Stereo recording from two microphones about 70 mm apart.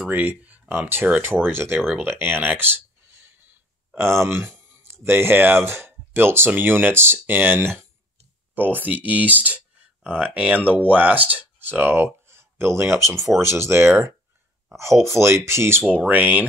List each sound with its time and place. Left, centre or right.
0.0 s speech: right
1.9 s a sound: right
5.0 s speech: right
16.1 s speech: right